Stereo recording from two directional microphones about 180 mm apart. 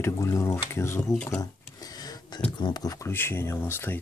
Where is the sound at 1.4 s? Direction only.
20° left (ahead or behind).